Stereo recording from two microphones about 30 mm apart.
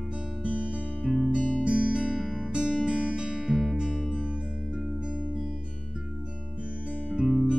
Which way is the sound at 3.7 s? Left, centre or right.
Right.